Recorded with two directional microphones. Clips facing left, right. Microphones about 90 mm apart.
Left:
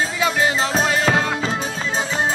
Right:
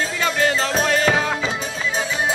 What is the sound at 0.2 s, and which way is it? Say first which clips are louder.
Music: even; 5° left (ahead or behind).